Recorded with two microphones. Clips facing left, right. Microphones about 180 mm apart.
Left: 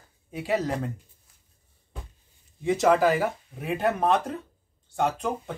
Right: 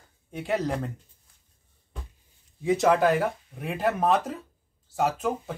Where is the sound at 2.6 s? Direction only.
Centre (ahead or behind).